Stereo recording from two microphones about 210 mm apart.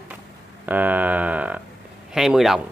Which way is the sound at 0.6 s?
5° right (ahead or behind).